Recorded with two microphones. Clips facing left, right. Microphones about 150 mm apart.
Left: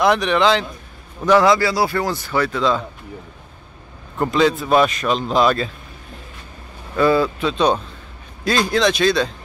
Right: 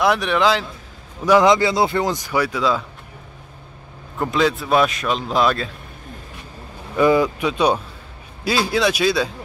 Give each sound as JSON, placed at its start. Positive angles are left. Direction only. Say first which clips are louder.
{"t": 0.0, "sound": "speech", "louder": "left 2 dB", "side_deg": 0}
{"t": 1.2, "sound": "a man's voice", "louder": "even", "side_deg": -15}
{"t": 4.2, "sound": "speech", "louder": "left 2 dB", "side_deg": 0}
{"t": 7.0, "sound": "a man's voice", "louder": "even", "side_deg": -15}